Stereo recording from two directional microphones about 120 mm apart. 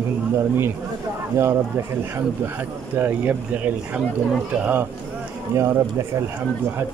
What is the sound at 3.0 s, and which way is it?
Speech, 15° right (ahead or behind).